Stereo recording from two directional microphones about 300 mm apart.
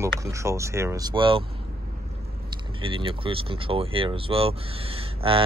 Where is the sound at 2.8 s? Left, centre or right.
Centre.